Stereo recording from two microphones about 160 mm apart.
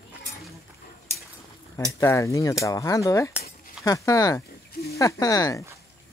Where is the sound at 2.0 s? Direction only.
20° left (ahead or behind).